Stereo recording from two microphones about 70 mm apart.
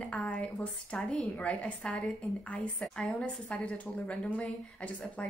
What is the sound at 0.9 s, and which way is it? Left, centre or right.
Speech, centre.